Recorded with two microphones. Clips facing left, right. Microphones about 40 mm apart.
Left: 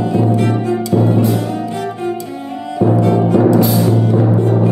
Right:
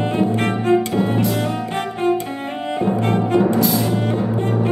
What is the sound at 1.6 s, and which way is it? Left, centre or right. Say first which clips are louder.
Music: even; right.